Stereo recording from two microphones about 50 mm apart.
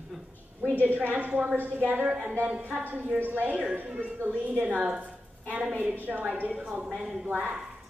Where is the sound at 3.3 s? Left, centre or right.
Right.